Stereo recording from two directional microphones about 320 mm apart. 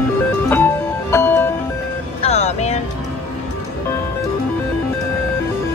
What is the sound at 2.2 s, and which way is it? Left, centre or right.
Music, left.